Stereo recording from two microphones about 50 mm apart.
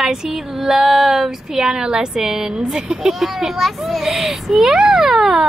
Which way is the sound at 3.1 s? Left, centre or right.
Centre.